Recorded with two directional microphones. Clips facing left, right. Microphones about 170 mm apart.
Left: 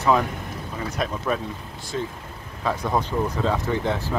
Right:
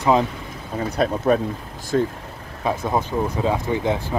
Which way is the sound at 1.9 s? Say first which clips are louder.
Right 8 dB; 55° right (ahead or behind).